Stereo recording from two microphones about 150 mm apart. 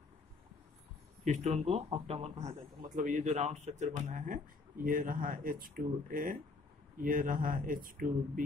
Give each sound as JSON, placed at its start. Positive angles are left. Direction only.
{"t": 1.2, "sound": "speech", "side_deg": -50}
{"t": 3.0, "sound": "speech", "side_deg": -55}